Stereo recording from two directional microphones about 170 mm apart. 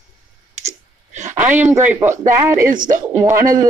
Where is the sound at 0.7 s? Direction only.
45° right (ahead or behind).